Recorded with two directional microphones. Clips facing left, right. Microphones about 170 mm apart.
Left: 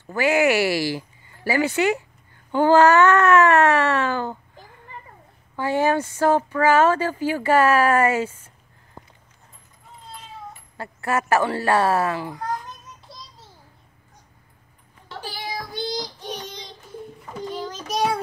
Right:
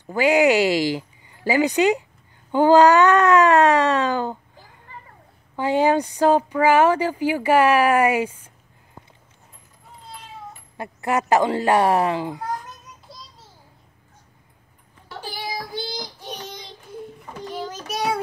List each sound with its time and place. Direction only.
0.0 s speech: 15° right (ahead or behind)
5.6 s speech: 15° right (ahead or behind)
10.8 s speech: 15° right (ahead or behind)
12.6 s child singing: centre (ahead or behind)
15.2 s child singing: 10° right (ahead or behind)
17.6 s child singing: 10° right (ahead or behind)